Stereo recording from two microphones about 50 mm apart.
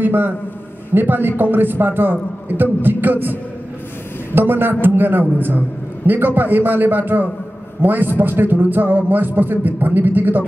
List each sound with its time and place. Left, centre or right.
0.0 s a man's voice: right
4.4 s a man's voice: right